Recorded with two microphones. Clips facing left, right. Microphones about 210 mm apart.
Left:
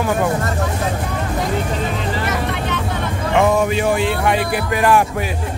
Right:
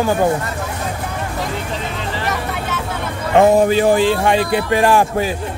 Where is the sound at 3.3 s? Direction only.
35° right (ahead or behind).